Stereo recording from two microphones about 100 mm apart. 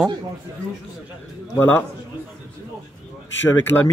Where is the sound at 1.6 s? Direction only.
15° left (ahead or behind).